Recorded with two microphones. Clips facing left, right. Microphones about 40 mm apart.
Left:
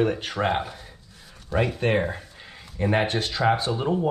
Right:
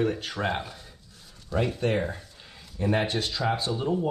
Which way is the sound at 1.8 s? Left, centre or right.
Left.